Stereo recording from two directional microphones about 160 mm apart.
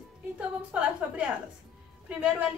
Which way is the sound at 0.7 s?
10° right (ahead or behind).